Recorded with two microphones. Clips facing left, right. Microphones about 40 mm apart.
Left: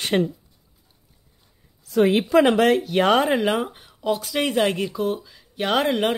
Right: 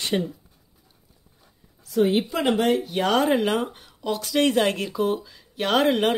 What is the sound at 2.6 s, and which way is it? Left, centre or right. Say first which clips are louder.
Speech: left 4 dB; left.